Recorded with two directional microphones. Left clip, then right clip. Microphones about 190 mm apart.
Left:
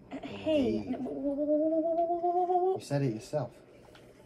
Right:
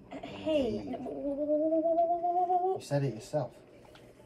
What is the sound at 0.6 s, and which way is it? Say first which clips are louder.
Speech: left 2 dB; 45° left (ahead or behind).